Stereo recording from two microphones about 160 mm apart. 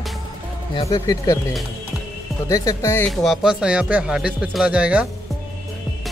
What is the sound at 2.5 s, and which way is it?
Speech, 20° left (ahead or behind).